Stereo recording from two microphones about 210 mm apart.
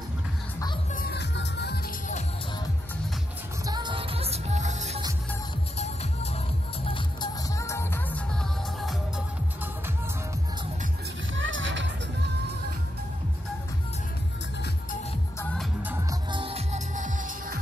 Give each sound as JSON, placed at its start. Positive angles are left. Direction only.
{"t": 0.9, "sound": "music", "side_deg": 50}
{"t": 3.6, "sound": "music", "side_deg": -20}
{"t": 6.9, "sound": "music", "side_deg": 20}
{"t": 11.3, "sound": "music", "side_deg": -65}
{"t": 15.8, "sound": "music", "side_deg": -10}
{"t": 16.3, "sound": "music", "side_deg": -25}